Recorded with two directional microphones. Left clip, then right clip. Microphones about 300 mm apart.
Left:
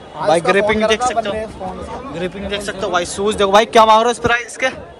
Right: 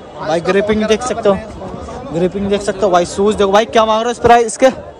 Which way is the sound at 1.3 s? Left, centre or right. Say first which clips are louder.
Right 9 dB; right.